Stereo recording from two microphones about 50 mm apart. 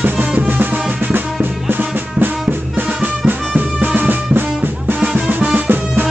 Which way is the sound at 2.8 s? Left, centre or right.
Right.